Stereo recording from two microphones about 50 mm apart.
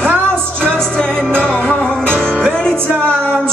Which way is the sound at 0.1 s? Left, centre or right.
Right.